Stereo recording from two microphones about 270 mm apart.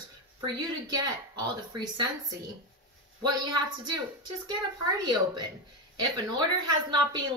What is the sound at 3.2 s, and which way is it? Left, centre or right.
Speech, centre.